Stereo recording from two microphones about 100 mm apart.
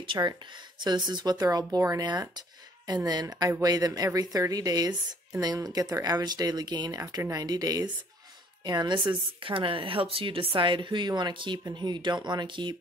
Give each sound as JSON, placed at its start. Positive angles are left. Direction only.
{"t": 0.0, "sound": "speech", "side_deg": -55}